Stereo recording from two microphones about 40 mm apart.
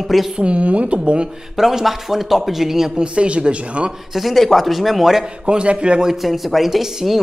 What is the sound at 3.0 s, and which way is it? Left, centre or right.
Speech, right.